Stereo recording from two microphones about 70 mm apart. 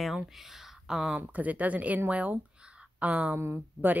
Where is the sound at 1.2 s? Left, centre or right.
Right.